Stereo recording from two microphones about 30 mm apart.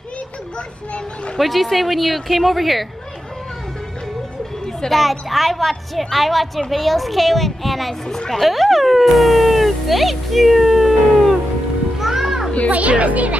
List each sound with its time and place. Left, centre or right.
0.9 s speech: left
1.4 s speech: centre
4.8 s speech: centre
12.0 s music: centre
12.7 s a child's voice: right